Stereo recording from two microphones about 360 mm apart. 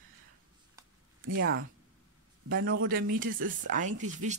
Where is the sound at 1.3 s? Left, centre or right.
Right.